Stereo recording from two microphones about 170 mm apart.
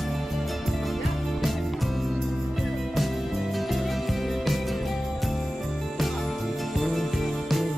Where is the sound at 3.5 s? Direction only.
Centre (ahead or behind).